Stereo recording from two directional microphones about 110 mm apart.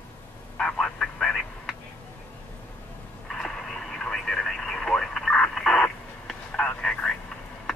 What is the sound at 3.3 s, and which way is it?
Radio, 5° left (ahead or behind).